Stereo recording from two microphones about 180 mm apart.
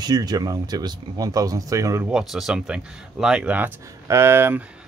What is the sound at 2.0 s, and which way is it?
Speech, 5° right (ahead or behind).